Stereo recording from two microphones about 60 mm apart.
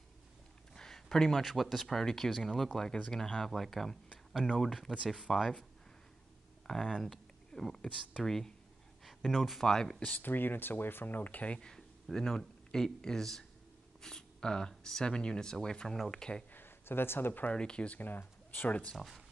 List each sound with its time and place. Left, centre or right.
0.7 s a sound: centre
1.4 s speech: centre
6.7 s speech: centre
10.1 s speech: left
11.7 s a man's voice: centre
16.5 s a sound: left
17.5 s speech: centre
18.9 s speech: centre